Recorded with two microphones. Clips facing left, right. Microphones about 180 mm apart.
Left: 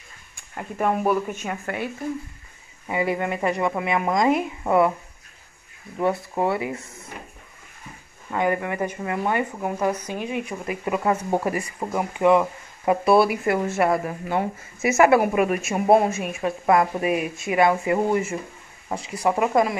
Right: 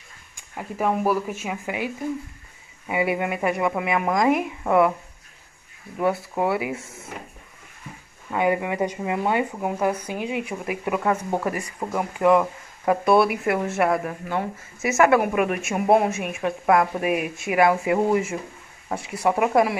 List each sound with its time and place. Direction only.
0.6 s speech: centre (ahead or behind)
2.9 s speech: 10° right (ahead or behind)
5.9 s speech: 5° right (ahead or behind)
8.3 s speech: 15° right (ahead or behind)
11.0 s speech: 5° left (ahead or behind)